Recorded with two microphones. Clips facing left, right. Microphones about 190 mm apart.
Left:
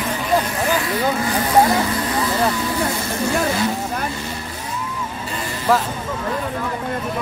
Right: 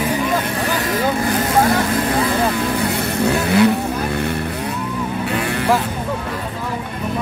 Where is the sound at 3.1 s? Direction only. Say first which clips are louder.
Right 6 dB; 65° right (ahead or behind).